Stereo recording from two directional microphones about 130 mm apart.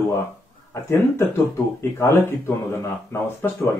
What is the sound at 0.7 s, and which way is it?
Speech, 25° left (ahead or behind).